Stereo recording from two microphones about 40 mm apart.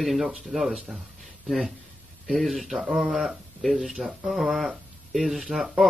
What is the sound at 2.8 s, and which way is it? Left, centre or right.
Speech, centre.